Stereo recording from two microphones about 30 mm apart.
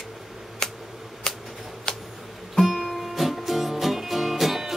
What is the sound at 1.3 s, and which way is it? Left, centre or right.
Shuffling cards, left.